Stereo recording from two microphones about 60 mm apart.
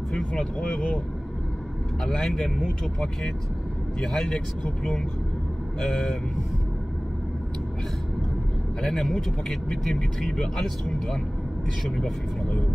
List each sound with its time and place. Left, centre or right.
0.1 s speech: centre
2.0 s speech: centre
8.8 s speech: centre